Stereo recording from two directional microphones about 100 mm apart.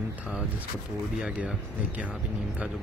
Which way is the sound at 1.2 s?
10° right (ahead or behind).